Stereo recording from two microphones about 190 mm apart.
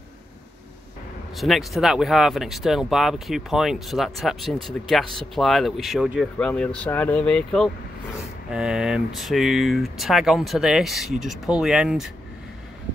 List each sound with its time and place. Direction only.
1.3 s speech: centre (ahead or behind)